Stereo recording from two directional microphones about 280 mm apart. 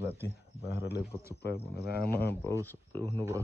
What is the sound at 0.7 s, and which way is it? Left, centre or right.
Speech, left.